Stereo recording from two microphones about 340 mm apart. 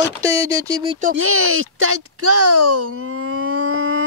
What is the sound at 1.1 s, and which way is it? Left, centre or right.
Speech, right.